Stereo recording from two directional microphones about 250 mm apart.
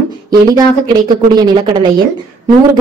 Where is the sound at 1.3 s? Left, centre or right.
Centre.